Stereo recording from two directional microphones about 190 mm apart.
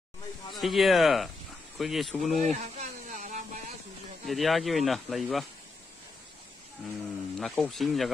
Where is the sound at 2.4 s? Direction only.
35° right (ahead or behind).